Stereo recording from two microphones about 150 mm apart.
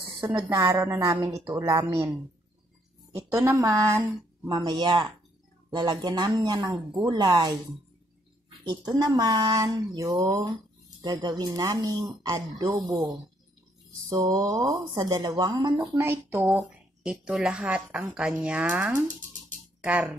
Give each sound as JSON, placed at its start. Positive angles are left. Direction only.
{"t": 0.5, "sound": "speech", "side_deg": -25}
{"t": 3.2, "sound": "speech", "side_deg": -15}
{"t": 8.6, "sound": "speech", "side_deg": -25}
{"t": 14.0, "sound": "speech", "side_deg": -25}
{"t": 15.9, "sound": "a woman's voice", "side_deg": -15}